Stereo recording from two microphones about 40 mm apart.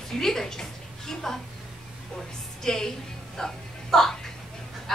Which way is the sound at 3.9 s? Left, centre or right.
Centre.